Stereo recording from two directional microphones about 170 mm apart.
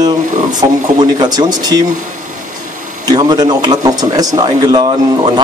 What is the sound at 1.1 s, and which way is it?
Speech, 25° right (ahead or behind).